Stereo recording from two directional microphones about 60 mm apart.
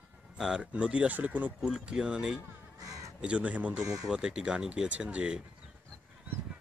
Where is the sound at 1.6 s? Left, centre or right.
Centre.